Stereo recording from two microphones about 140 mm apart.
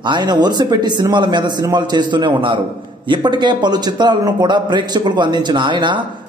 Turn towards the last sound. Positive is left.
turn(degrees=-35)  # may be behind; listen again after turning